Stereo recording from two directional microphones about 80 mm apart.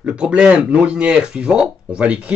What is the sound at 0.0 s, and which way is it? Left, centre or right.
Speech, centre.